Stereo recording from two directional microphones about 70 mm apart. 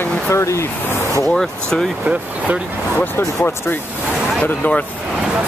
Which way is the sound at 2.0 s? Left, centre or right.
Centre.